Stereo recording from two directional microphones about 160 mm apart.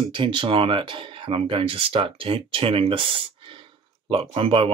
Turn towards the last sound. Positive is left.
turn(degrees=-35)  # may be behind; listen again after turning